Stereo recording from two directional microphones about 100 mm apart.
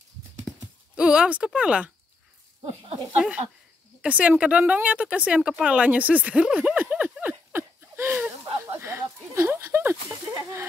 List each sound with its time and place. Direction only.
0.9 s speech: 10° right (ahead or behind)
3.2 s speech: 10° right (ahead or behind)
8.6 s a sound: 30° right (ahead or behind)